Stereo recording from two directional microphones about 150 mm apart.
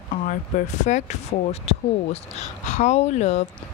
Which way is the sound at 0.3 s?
55° left (ahead or behind).